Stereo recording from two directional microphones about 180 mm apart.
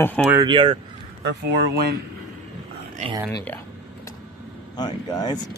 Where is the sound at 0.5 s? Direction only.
30° right (ahead or behind).